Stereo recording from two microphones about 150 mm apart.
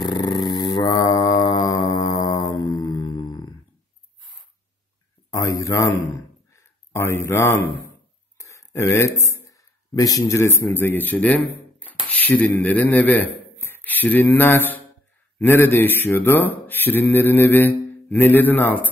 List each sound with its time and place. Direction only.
0.0 s mantra: 30° left (ahead or behind)
5.3 s a sound: 20° left (ahead or behind)
8.9 s speech: 20° left (ahead or behind)